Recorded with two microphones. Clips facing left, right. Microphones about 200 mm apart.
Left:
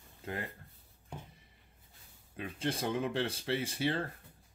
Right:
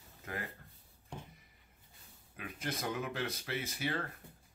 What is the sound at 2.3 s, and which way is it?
Speech, 30° left (ahead or behind).